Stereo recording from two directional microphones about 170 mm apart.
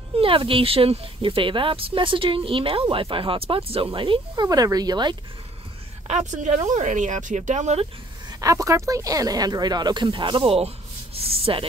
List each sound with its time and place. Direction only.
0.1 s speech: 30° right (ahead or behind)
6.0 s speech: 45° right (ahead or behind)
8.3 s speech: 20° right (ahead or behind)